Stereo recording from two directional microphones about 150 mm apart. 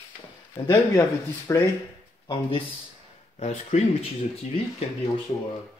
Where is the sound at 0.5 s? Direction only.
30° left (ahead or behind).